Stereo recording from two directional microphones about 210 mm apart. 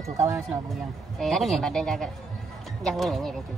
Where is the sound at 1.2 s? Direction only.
Centre (ahead or behind).